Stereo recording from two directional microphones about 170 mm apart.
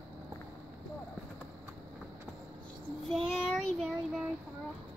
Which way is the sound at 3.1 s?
Centre (ahead or behind).